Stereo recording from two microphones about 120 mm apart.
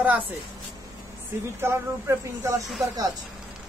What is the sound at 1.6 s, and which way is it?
Speech, 20° right (ahead or behind).